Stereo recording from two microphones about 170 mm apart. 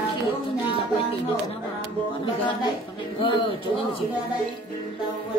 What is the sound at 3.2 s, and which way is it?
Speech, 30° left (ahead or behind).